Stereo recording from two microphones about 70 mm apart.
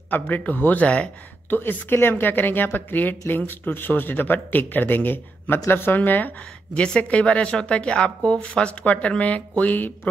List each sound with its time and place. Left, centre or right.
0.1 s speech: left
1.5 s speech: left
6.7 s speech: centre